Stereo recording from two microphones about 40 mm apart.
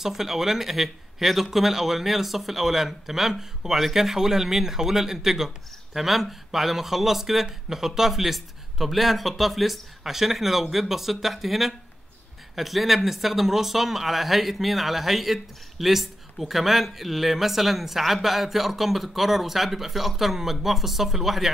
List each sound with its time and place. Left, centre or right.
0.0 s speech: centre